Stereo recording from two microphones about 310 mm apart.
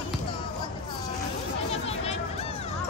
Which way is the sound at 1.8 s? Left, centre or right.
Centre.